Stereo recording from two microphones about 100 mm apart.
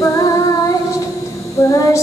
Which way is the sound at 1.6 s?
35° left (ahead or behind).